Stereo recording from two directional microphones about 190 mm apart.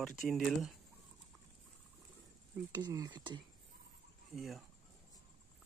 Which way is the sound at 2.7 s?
20° right (ahead or behind).